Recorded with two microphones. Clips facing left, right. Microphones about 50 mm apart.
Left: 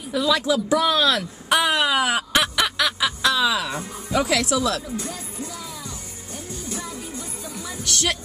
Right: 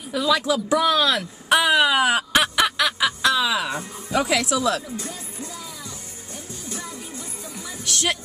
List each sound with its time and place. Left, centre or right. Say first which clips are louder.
0.1 s speech: even; centre
1.7 s a sound: right 2 dB; centre
3.6 s speech: right 1 dB; centre
7.9 s speech: even; centre